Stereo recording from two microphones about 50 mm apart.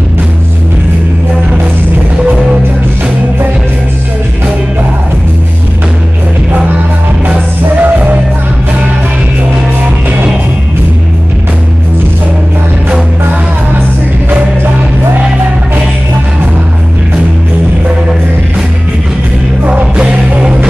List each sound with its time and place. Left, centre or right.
7.8 s music: right
19.6 s music: right